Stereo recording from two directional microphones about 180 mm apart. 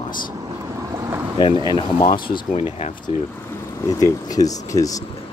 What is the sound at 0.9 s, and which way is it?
Boat, 20° right (ahead or behind).